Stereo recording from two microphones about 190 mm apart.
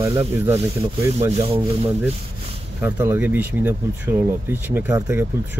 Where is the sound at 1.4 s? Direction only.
30° right (ahead or behind).